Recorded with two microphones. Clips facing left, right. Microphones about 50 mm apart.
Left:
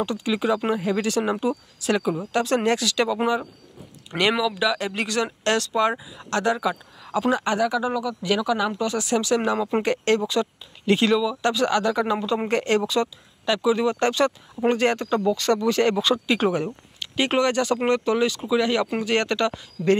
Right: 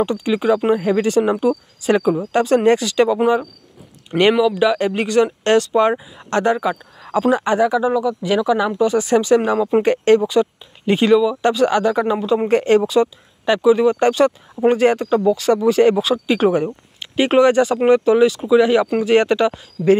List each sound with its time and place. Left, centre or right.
0.0 s speech: right
4.2 s speech: right
9.0 s speech: right
9.6 s speech: centre
9.8 s speech: centre
12.2 s speech: centre
12.4 s speech: centre
13.5 s speech: right